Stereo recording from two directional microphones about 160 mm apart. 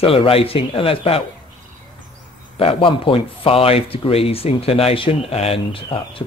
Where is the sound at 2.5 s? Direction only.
35° left (ahead or behind).